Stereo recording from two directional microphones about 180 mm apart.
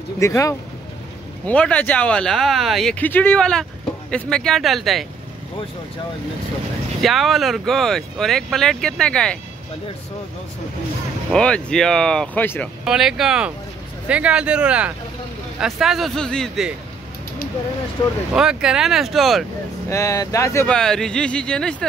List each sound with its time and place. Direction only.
0.2 s speech: 15° left (ahead or behind); by 5.0 s centre (ahead or behind)
7.0 s speech: centre (ahead or behind)
11.3 s speech: 5° left (ahead or behind)
12.8 s speech: centre (ahead or behind)
18.0 s speech: 30° left (ahead or behind)
18.3 s speech: 5° right (ahead or behind)
19.9 s speech: 15° left (ahead or behind)
20.6 s speech: 5° left (ahead or behind)